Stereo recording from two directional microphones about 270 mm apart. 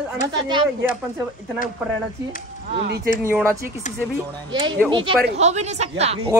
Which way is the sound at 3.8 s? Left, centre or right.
Left.